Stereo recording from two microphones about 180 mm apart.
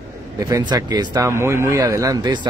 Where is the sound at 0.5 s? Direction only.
20° right (ahead or behind).